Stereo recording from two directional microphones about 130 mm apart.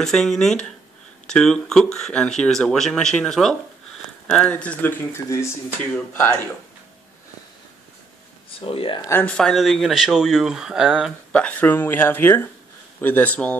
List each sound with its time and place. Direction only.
0.0 s speech: 5° left (ahead or behind)
5.9 s speech: 15° left (ahead or behind)
8.5 s speech: 45° left (ahead or behind)
9.1 s speech: 5° left (ahead or behind)
11.3 s speech: 10° left (ahead or behind)